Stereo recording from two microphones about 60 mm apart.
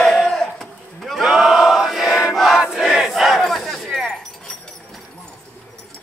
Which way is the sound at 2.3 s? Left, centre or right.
Centre.